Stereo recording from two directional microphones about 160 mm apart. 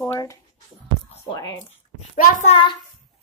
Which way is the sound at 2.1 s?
55° left (ahead or behind).